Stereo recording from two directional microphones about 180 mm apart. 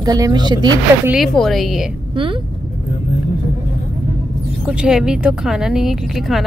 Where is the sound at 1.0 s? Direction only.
Centre (ahead or behind).